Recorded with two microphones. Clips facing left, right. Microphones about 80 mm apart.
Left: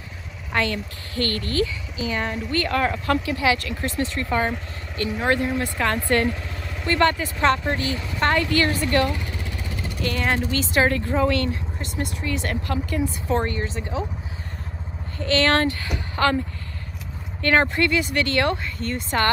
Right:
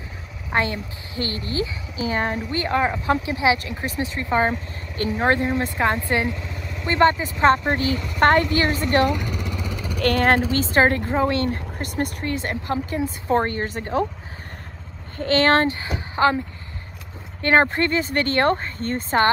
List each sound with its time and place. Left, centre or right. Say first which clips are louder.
0.5 s speech: right 1 dB; right
2.0 s speech: right 3 dB; right
2.5 s speech: even; right
8.5 s speech: right 1 dB; right
9.9 s speech: right 6 dB; right
10.4 s speech: right 3 dB; right
11.5 s speech: right 3 dB; right
12.4 s speech: right 1 dB; right
13.7 s speech: right 5 dB; right
15.1 s a woman's voice: right 2 dB; right
17.4 s speech: right 2 dB; right